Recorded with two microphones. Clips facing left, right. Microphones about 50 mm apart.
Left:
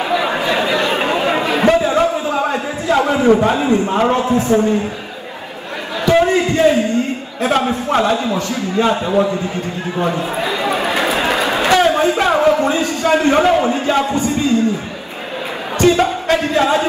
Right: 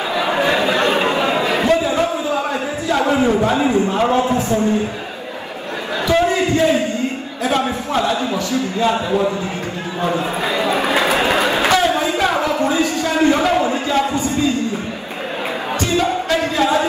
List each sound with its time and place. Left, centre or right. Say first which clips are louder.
0.1 s chatter: left 2 dB; left
0.7 s chatter: even; right
1.1 s a sound: left 1 dB; left
3.9 s a man's voice: left 1 dB; left
6.0 s a sound: left 3 dB; left
7.4 s a man's voice: left 3 dB; left
10.8 s run: right 1 dB; right
11.7 s a sound: left 3 dB; left
15.8 s music: left 6 dB; left